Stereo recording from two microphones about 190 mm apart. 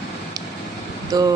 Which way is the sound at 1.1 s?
20° right (ahead or behind).